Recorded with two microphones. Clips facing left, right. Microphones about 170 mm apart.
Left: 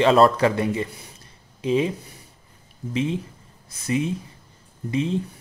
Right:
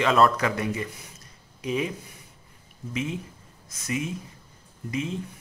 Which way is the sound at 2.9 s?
30° left (ahead or behind).